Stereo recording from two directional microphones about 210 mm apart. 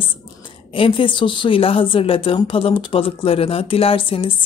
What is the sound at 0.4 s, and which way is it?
A woman's voice, 25° left (ahead or behind).